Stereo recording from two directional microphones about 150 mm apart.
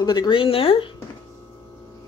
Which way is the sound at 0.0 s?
30° left (ahead or behind).